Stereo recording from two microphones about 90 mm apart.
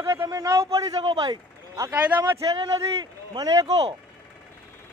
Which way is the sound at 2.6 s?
50° right (ahead or behind).